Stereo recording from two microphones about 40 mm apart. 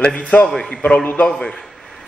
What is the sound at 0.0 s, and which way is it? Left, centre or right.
A man's voice, left.